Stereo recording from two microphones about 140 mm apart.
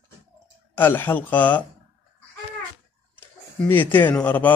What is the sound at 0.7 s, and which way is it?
Speech, 15° left (ahead or behind).